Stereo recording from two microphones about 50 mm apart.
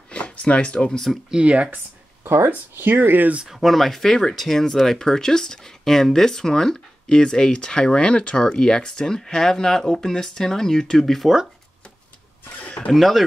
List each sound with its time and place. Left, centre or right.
0.1 s speech: left
1.3 s speech: right
2.2 s speech: right
3.4 s speech: centre
12.4 s a sound: left
12.9 s speech: centre